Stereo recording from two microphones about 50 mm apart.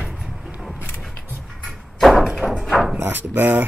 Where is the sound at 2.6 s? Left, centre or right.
Centre.